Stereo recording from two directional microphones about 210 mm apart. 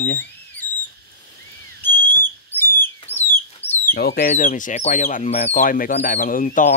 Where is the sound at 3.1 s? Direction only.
10° left (ahead or behind).